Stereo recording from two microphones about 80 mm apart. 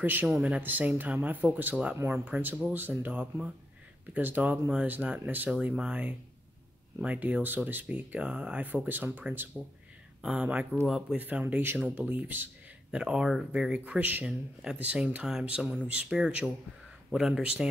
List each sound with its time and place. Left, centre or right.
0.0 s speech: right
10.2 s speech: centre
11.1 s speech: right
12.9 s speech: centre